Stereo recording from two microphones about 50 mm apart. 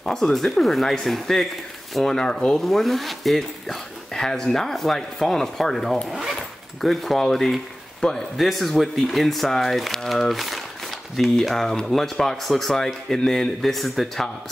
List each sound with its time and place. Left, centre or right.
0.0 s speech: centre
8.4 s speech: centre
11.5 s speech: centre